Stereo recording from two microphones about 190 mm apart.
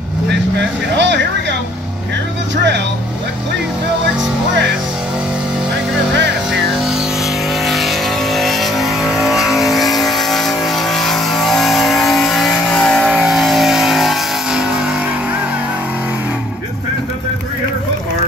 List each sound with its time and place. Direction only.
0.3 s vehicle: 65° right (ahead or behind)
2.5 s speech: 70° right (ahead or behind)
7.6 s vehicle: centre (ahead or behind)